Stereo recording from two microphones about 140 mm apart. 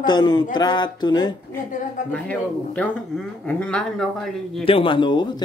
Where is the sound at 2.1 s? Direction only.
10° left (ahead or behind).